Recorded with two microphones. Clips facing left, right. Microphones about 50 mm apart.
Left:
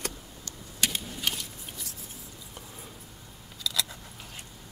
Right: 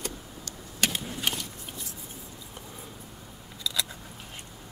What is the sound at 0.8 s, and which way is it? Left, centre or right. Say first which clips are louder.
Vehicle: right 2 dB; centre.